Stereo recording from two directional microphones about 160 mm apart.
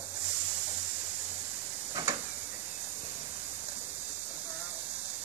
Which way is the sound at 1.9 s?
20° right (ahead or behind).